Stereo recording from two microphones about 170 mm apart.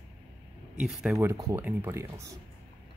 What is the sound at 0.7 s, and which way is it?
Speech, 5° right (ahead or behind).